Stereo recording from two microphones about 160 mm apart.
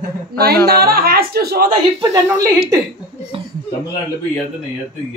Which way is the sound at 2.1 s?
20° right (ahead or behind).